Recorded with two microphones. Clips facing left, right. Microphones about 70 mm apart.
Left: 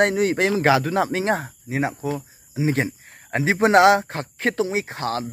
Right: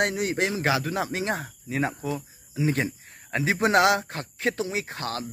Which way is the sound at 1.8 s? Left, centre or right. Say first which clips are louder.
Left 3 dB; centre.